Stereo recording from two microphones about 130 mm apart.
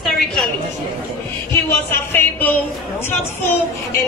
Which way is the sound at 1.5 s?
15° left (ahead or behind).